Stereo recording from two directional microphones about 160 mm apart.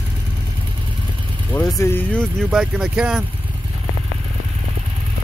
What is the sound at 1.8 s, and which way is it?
Speech, 15° left (ahead or behind).